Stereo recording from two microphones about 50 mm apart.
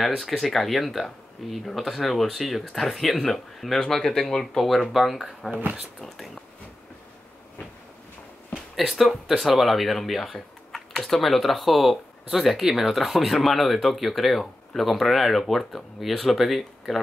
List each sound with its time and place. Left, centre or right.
0.0 s speech: centre
5.5 s speech: right
8.7 s speech: centre